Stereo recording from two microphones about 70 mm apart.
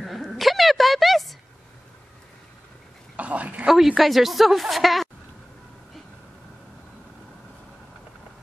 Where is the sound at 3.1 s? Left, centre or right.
Centre.